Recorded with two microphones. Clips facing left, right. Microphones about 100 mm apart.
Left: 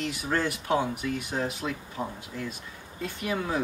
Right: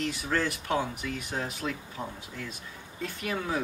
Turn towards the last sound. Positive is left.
turn(degrees=5)  # may be behind; listen again after turning